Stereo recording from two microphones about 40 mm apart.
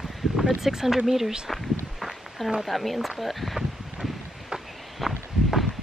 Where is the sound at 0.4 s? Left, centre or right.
Centre.